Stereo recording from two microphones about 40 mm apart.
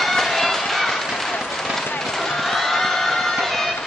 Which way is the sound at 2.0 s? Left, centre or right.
Centre.